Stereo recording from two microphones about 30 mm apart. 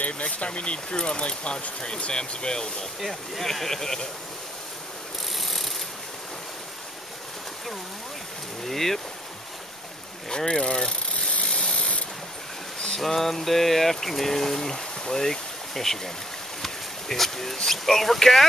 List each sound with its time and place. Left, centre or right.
0.2 s speech: left
3.0 s speech: centre
3.5 s speech: centre
5.3 s ratchet: centre
8.6 s speech: centre
10.3 s speech: left
11.1 s a sound: left
11.5 s ratchet: left
12.7 s a sound: left
13.0 s speech: centre
16.6 s a sound: centre
17.6 s speech: centre